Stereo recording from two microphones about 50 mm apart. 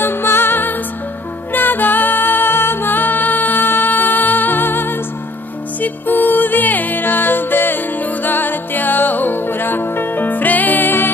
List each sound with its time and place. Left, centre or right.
0.0 s music: left